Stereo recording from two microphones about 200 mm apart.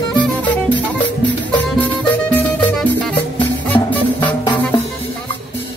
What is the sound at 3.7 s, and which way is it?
Music, 10° left (ahead or behind).